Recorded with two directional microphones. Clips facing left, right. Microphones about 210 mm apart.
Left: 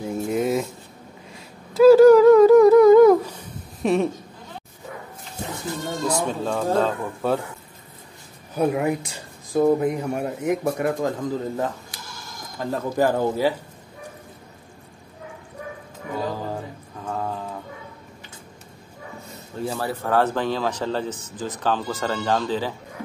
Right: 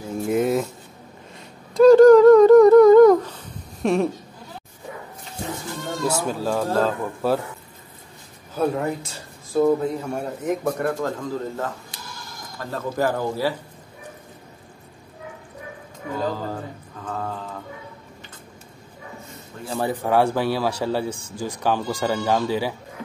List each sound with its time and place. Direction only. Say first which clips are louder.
0.3 s a sound: right 3 dB; centre (ahead or behind)
1.7 s a sound: right 1 dB; 5° left (ahead or behind)
3.8 s speech: even; centre (ahead or behind)
6.0 s speech: right 1 dB; 5° right (ahead or behind)
8.5 s speech: left 2 dB; 15° left (ahead or behind)
19.8 s speech: right 3 dB; 15° right (ahead or behind)